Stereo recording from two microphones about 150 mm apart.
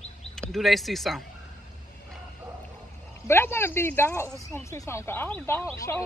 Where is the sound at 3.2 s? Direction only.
15° left (ahead or behind).